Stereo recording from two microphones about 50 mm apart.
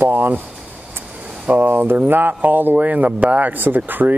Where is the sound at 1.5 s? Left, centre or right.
Right.